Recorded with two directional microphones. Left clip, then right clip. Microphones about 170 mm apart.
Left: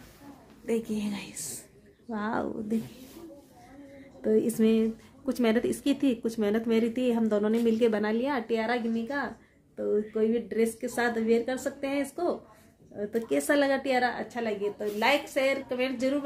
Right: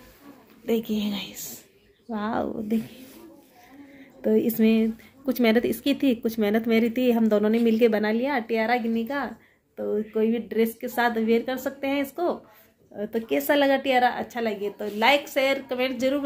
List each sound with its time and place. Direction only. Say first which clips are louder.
0.7 s speech: right 4 dB; 10° right (ahead or behind)
4.2 s speech: right 3 dB; 5° right (ahead or behind)